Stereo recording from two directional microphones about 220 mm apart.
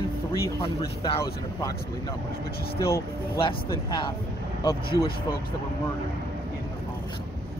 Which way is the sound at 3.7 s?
20° left (ahead or behind).